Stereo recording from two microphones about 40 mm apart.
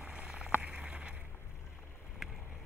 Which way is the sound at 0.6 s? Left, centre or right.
Right.